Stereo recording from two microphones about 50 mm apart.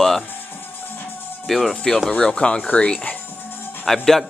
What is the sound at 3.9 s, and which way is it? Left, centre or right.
Speech, centre.